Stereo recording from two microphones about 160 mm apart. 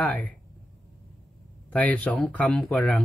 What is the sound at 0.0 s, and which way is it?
Speech, 10° left (ahead or behind).